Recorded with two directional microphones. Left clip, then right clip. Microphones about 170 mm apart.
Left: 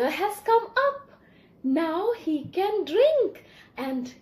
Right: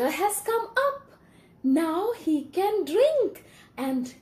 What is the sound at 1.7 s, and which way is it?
Speech, 20° right (ahead or behind).